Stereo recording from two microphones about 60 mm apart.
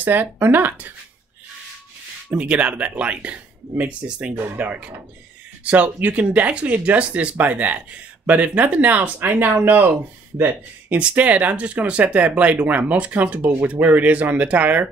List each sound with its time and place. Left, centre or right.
0.0 s speech: right
2.3 s speech: centre; by 10.5 s right
10.9 s speech: right